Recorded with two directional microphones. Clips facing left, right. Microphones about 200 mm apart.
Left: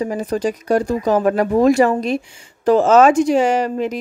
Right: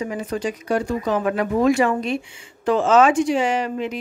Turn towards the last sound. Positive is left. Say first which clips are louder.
# left 5 dB
turn(degrees=40)  # may be behind; listen again after turning